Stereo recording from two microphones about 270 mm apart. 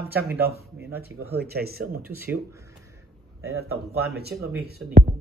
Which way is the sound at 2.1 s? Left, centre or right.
Centre.